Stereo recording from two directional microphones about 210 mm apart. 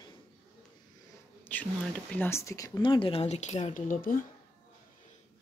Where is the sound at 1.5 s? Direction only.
10° left (ahead or behind); by 4.2 s 40° left (ahead or behind).